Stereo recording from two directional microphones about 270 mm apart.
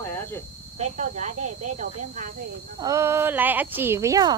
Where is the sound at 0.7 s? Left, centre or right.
Right.